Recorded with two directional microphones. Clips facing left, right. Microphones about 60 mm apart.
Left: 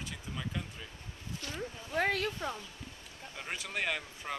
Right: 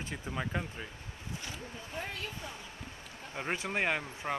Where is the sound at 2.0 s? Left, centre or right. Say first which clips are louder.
Left 10 dB; left.